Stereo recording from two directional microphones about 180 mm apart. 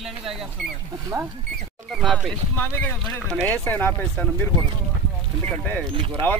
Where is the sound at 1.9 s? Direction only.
Centre (ahead or behind).